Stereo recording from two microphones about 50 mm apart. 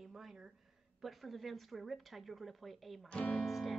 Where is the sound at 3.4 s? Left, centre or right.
Centre.